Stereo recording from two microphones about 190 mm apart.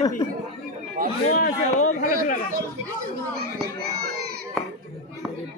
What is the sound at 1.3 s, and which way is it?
A man's voice, 45° left (ahead or behind).